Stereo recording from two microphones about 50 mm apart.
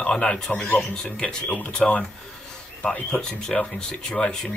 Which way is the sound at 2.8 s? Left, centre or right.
Left.